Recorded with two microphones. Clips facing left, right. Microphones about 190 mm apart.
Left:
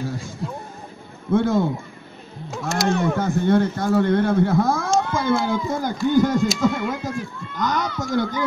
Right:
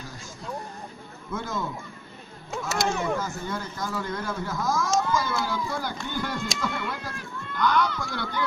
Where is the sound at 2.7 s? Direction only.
Centre (ahead or behind).